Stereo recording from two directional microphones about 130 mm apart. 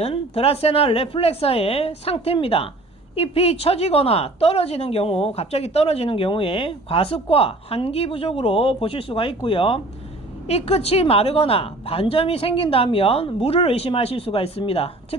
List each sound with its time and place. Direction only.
0.0 s a woman's voice: 50° left (ahead or behind)